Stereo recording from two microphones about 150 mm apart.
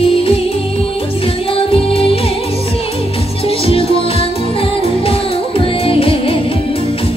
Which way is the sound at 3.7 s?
35° left (ahead or behind).